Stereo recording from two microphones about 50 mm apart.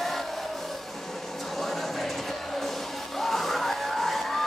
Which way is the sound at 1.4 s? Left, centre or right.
Centre.